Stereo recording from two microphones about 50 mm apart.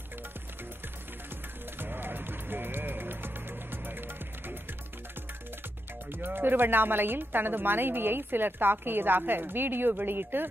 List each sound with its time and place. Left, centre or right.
1.8 s music: right
6.1 s a woman's voice: right